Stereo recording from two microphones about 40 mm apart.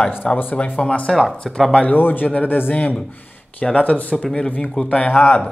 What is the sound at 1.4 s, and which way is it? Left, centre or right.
Speech, centre.